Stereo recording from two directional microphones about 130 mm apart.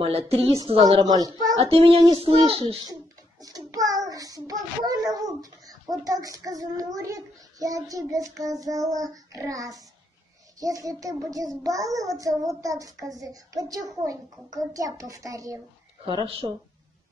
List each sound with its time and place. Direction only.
0.0 s a woman's voice: 50° right (ahead or behind)
0.8 s a child's voice: 30° right (ahead or behind)
1.6 s a woman's voice: 45° right (ahead or behind)
2.8 s child singing: 30° right (ahead or behind)
4.5 s a sound: 30° right (ahead or behind)
6.0 s a child's voice: 30° right (ahead or behind)
16.1 s speech: 40° right (ahead or behind)